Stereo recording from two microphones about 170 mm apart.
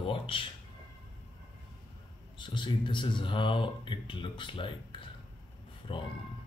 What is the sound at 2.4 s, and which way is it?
Speech, 25° left (ahead or behind).